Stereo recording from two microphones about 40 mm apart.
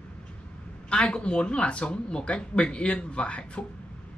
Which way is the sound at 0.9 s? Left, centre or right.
Left.